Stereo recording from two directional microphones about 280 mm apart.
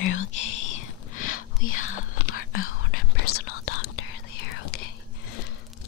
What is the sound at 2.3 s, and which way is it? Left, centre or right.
Whispering, left.